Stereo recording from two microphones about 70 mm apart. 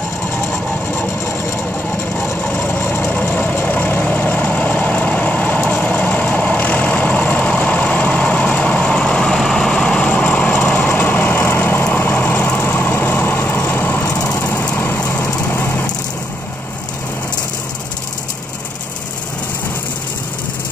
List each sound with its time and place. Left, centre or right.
0.3 s vehicle: left
2.4 s vehicle: left
3.1 s vehicle: left